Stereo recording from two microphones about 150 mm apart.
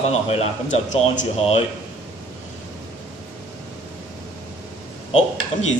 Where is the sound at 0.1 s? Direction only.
45° left (ahead or behind).